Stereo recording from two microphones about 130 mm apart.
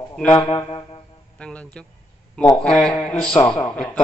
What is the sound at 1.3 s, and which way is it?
A man's voice, 10° left (ahead or behind).